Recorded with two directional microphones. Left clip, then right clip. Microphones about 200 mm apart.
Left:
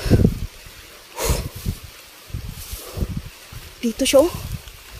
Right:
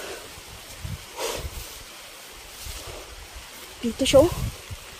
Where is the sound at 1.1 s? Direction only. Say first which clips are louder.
Left 5 dB; 30° left (ahead or behind).